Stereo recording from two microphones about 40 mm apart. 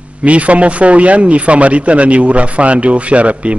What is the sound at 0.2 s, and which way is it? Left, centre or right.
Speech, right.